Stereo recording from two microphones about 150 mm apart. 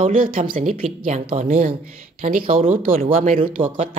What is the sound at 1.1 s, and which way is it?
Speech, 45° right (ahead or behind).